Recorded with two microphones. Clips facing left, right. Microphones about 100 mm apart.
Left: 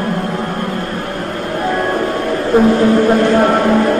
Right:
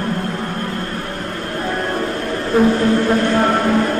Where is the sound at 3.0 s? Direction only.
15° left (ahead or behind).